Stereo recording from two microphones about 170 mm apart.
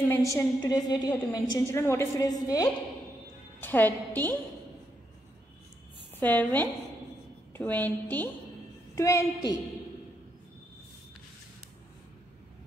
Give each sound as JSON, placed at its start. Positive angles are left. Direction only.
{"t": 0.3, "sound": "a woman's voice", "side_deg": 20}
{"t": 3.6, "sound": "a woman's voice", "side_deg": 10}
{"t": 6.1, "sound": "a woman's voice", "side_deg": 10}